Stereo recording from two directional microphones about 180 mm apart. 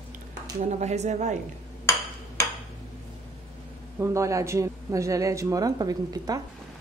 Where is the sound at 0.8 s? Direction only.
40° right (ahead or behind).